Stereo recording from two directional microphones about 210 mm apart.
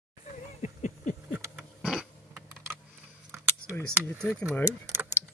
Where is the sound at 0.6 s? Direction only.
35° left (ahead or behind).